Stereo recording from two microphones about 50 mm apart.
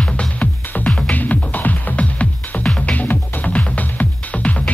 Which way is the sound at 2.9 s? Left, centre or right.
Left.